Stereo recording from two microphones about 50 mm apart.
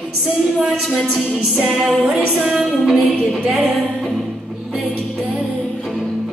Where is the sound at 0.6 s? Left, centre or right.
Centre.